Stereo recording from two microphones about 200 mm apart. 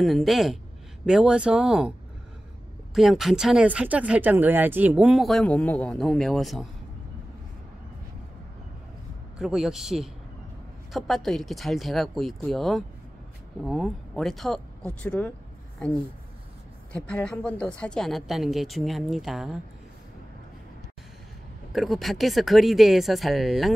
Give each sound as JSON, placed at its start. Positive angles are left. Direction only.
{"t": 0.0, "sound": "speech", "side_deg": 0}
{"t": 9.4, "sound": "speech", "side_deg": 0}
{"t": 16.9, "sound": "speech", "side_deg": 5}
{"t": 21.7, "sound": "speech", "side_deg": 0}